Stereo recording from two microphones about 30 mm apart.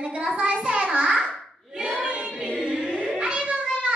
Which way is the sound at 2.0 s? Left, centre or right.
Right.